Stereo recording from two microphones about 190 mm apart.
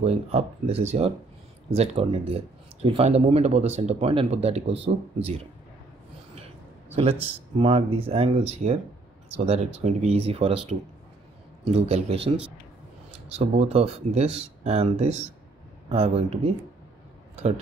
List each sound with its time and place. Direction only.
0.0 s speech: 30° right (ahead or behind)
7.5 s speech: 30° right (ahead or behind)